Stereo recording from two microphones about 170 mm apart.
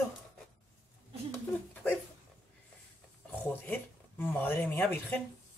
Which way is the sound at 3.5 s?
10° left (ahead or behind).